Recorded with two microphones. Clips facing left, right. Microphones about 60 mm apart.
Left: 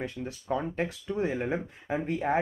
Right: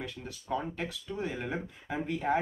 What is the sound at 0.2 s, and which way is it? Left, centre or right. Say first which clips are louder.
Speech: left 7 dB; centre.